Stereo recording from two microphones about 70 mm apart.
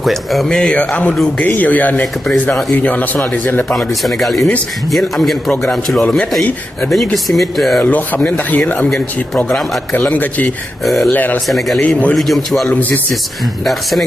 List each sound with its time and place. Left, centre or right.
0.0 s a man's voice: centre
1.4 s speech: left
3.7 s a man's voice: centre
7.8 s speech: left
11.1 s speech: left
11.4 s a man's voice: centre